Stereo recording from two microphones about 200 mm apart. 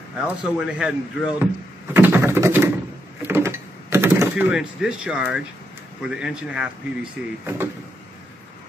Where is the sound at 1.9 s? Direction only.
10° right (ahead or behind).